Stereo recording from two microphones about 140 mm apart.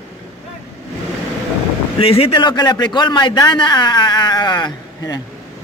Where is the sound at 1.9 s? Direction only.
45° left (ahead or behind).